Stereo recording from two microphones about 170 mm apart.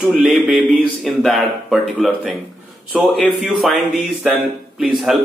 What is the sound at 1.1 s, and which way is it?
Speech, centre (ahead or behind).